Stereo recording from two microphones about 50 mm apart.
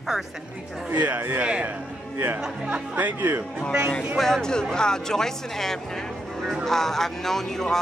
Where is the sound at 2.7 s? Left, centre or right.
Right.